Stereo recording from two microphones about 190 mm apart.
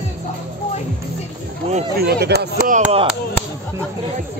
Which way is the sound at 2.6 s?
40° right (ahead or behind).